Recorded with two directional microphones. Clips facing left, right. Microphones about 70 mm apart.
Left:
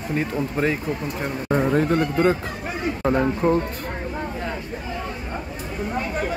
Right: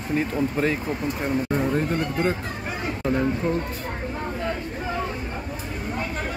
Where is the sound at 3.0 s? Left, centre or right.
Left.